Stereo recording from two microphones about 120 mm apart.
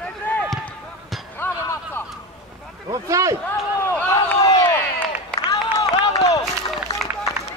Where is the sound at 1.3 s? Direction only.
20° left (ahead or behind).